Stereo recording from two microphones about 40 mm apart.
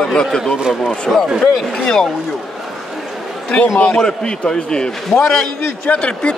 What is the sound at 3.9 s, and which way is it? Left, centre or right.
Speech, left.